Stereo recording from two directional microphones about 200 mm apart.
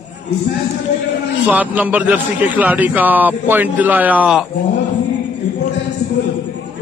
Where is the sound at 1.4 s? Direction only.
10° right (ahead or behind).